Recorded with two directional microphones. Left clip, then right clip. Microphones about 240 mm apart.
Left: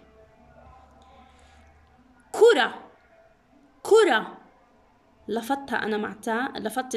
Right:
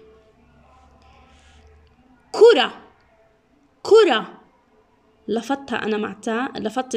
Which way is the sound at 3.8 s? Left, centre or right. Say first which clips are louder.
Right 5 dB; centre.